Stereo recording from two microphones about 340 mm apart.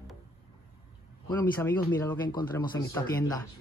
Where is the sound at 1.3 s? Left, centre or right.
Centre.